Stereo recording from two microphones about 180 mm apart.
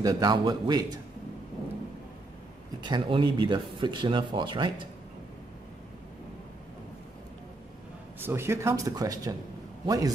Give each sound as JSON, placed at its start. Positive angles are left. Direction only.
{"t": 0.0, "sound": "speech", "side_deg": -20}
{"t": 2.8, "sound": "speech", "side_deg": -25}
{"t": 8.2, "sound": "speech", "side_deg": -15}